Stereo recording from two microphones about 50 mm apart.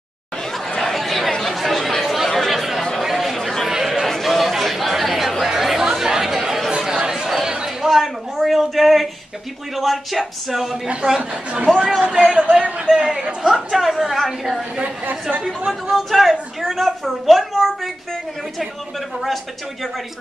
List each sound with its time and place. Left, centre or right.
0.7 s chatter: centre
3.0 s a sound: centre
4.1 s chatter: centre
7.4 s a sound: centre
9.8 s a woman's voice: centre
11.1 s speech: right
13.7 s a woman's voice: centre
15.9 s a woman's voice: centre
19.2 s a woman's voice: centre